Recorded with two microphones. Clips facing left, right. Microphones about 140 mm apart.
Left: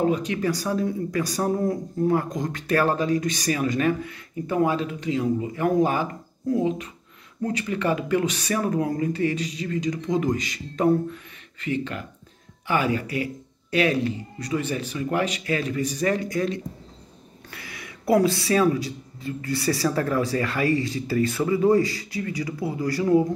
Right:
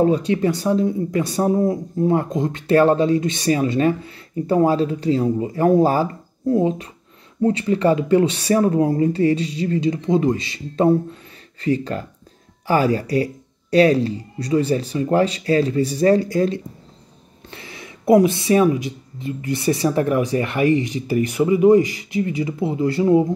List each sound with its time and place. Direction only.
0.0 s a woman's voice: 30° right (ahead or behind)